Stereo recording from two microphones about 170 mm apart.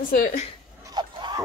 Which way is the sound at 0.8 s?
25° right (ahead or behind).